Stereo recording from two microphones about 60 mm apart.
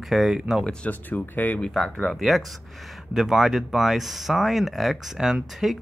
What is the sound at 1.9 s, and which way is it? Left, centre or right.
Speech, centre.